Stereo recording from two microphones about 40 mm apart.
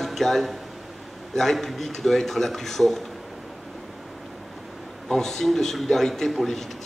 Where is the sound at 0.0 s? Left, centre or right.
Centre.